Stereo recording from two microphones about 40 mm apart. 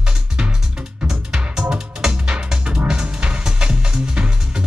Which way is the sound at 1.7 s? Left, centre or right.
Right.